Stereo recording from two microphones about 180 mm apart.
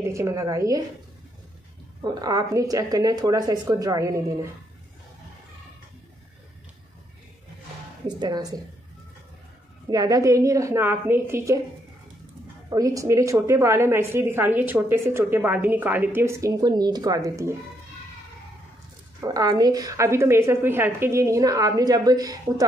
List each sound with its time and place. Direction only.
0.1 s a woman's voice: 15° right (ahead or behind)
2.0 s a woman's voice: 20° right (ahead or behind)
8.2 s a woman's voice: 20° right (ahead or behind)
9.8 s a woman's voice: 20° right (ahead or behind)
12.6 s a woman's voice: 20° right (ahead or behind)
19.2 s a woman's voice: 20° right (ahead or behind)